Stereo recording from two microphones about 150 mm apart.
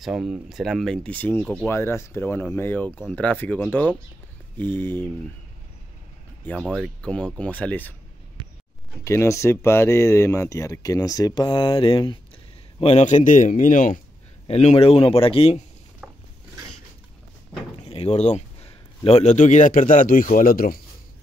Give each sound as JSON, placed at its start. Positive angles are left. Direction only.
{"t": 0.0, "sound": "speech", "side_deg": -5}
{"t": 6.7, "sound": "speech", "side_deg": 5}
{"t": 9.0, "sound": "speech", "side_deg": 20}
{"t": 12.8, "sound": "a man's voice", "side_deg": 50}
{"t": 14.5, "sound": "speech", "side_deg": 45}
{"t": 16.0, "sound": "a sound", "side_deg": -10}
{"t": 17.8, "sound": "a man's voice", "side_deg": 40}